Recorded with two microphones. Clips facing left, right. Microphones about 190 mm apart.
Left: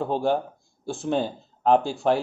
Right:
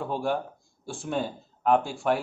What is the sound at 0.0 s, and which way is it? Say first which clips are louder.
Speech: left 5 dB; 25° left (ahead or behind).